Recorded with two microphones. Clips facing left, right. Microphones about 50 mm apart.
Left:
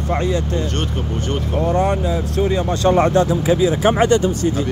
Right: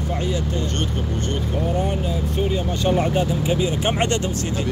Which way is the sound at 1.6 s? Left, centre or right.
Left.